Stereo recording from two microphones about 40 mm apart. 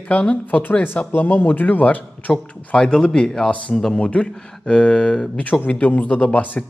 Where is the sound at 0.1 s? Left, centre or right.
Left.